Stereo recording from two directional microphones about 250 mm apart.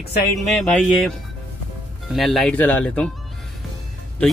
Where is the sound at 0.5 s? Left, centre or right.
Centre.